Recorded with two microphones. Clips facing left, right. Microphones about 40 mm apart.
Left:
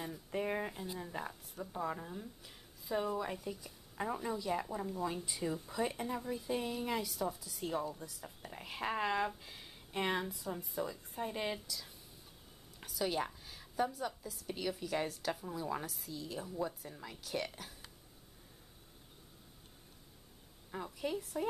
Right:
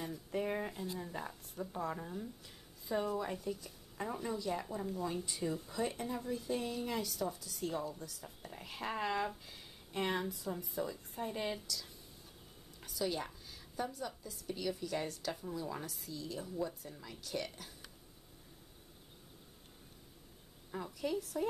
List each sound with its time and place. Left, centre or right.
0.0 s a woman's voice: centre
13.0 s a sound: centre
14.6 s a woman's voice: centre
20.7 s a woman's voice: centre